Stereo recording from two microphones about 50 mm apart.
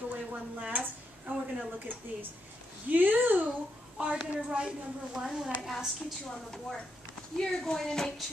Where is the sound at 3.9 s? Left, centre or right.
Centre.